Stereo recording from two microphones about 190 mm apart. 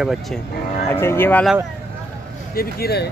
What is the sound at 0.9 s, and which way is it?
Speech, 10° left (ahead or behind).